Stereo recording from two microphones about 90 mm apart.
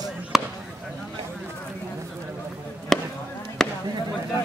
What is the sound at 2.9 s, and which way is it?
Chop, 5° left (ahead or behind).